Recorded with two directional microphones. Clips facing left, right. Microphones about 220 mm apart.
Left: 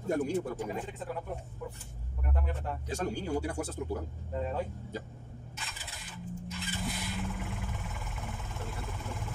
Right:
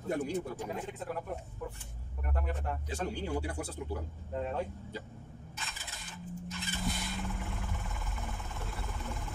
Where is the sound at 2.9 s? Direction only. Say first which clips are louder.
Left 3 dB; 45° left (ahead or behind).